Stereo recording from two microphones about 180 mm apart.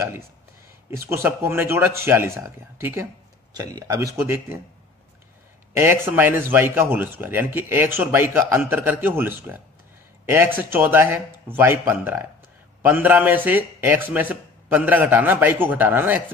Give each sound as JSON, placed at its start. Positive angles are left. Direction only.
{"t": 0.9, "sound": "speech", "side_deg": -15}
{"t": 5.8, "sound": "speech", "side_deg": -10}